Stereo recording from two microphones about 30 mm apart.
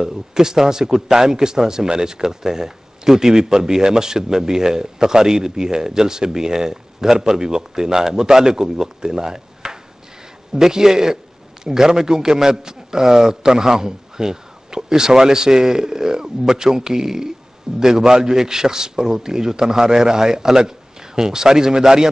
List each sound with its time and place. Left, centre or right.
0.0 s a man's voice: centre